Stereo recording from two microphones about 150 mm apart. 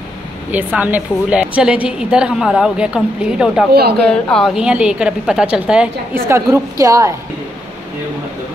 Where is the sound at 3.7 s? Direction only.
90° right.